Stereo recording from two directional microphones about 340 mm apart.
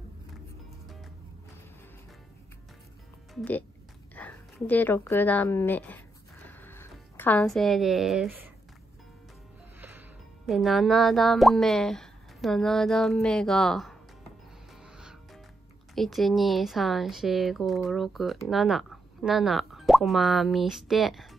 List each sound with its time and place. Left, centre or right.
3.3 s speech: centre
4.1 s a sound: centre
9.8 s speech: centre
14.8 s music: centre
15.9 s speech: centre